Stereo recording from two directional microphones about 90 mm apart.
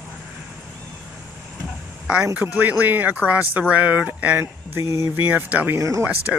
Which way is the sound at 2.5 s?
20° right (ahead or behind).